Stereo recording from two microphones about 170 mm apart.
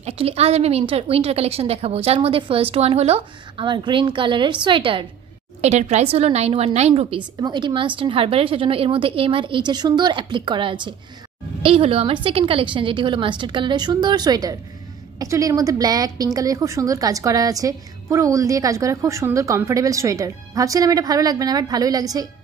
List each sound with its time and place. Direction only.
0.0 s a woman's voice: 35° right (ahead or behind)
5.6 s a woman's voice: 40° right (ahead or behind); by 22.3 s 20° right (ahead or behind)